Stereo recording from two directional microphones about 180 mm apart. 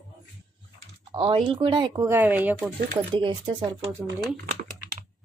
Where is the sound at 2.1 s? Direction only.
10° right (ahead or behind).